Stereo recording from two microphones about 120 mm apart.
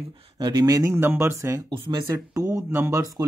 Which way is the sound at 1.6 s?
40° right (ahead or behind).